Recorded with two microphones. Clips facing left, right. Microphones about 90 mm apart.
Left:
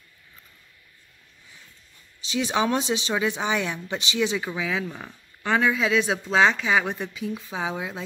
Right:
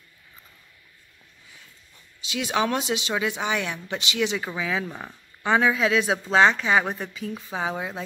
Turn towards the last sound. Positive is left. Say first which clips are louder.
# right 1 dB
turn(degrees=0)  # may be behind; listen again after turning